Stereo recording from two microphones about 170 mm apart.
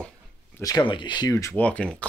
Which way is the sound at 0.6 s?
25° left (ahead or behind).